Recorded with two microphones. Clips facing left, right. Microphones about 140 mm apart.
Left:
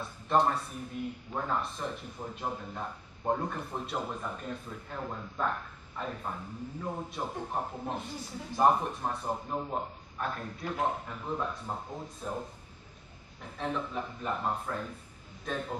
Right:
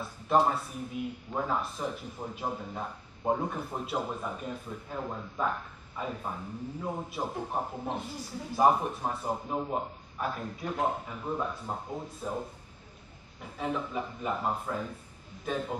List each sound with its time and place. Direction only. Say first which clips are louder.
0.0 s speech: right 1 dB; 5° right (ahead or behind)
13.4 s speech: right 1 dB; 5° right (ahead or behind)